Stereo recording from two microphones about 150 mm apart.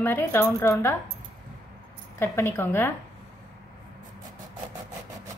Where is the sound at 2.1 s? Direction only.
15° left (ahead or behind).